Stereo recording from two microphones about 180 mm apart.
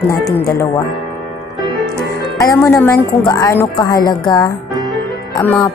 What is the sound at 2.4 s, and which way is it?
Speech, 15° left (ahead or behind).